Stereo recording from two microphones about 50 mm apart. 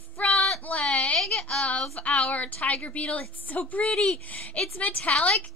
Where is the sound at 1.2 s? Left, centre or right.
Centre.